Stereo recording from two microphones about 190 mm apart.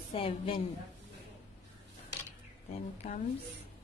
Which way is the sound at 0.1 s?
30° left (ahead or behind).